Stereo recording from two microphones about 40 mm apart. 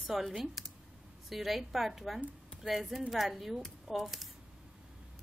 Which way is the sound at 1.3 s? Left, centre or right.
Centre.